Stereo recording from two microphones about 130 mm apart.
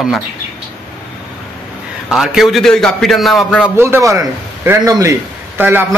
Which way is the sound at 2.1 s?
Centre (ahead or behind).